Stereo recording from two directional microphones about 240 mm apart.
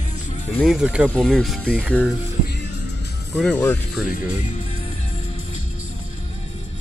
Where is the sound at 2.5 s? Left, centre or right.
Left.